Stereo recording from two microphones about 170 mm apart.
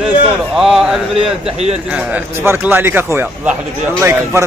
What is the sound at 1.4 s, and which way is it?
Speech, 40° right (ahead or behind).